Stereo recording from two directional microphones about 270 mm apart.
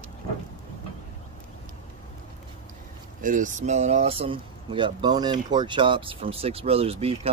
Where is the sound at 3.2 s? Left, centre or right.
Right.